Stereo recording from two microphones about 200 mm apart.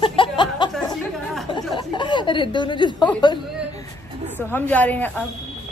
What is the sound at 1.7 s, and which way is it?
A woman's voice, 25° left (ahead or behind).